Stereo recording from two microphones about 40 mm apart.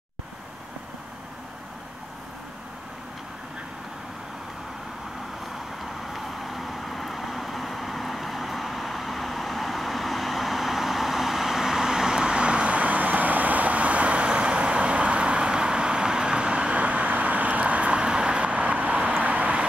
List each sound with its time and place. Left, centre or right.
6.0 s vehicle: centre; by 19.6 s right